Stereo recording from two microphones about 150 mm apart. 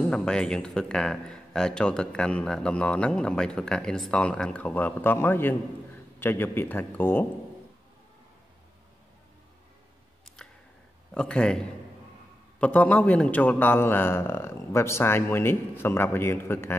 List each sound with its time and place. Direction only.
0.1 s a man's voice: 5° left (ahead or behind)
10.2 s camera: 5° left (ahead or behind)
11.1 s a man's voice: 5° left (ahead or behind)